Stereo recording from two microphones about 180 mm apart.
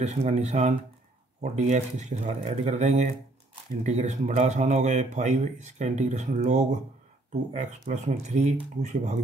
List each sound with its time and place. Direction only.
0.0 s speech: 40° right (ahead or behind)